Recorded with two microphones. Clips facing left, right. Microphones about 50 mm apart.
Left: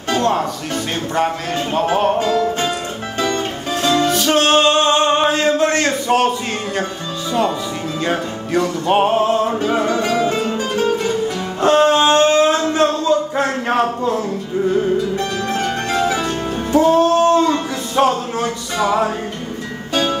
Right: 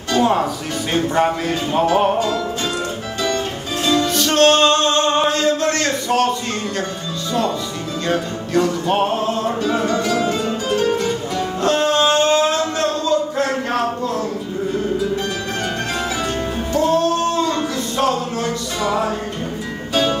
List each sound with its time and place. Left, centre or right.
0.2 s speech: centre
4.1 s music: centre
8.1 s music: centre
11.6 s a sound: centre
16.7 s a sound: centre
19.9 s music: centre